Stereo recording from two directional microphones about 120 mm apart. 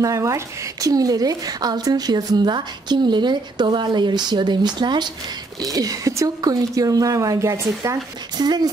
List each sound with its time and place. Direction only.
0.0 s a woman's voice: 25° right (ahead or behind)